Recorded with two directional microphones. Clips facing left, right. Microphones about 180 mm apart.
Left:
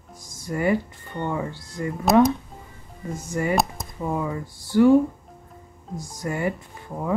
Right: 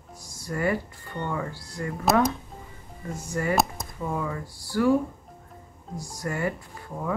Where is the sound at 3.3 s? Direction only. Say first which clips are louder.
Left 2 dB; 20° left (ahead or behind).